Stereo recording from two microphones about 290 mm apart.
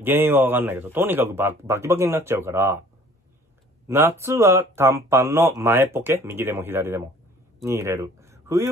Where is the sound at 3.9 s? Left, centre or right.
Centre.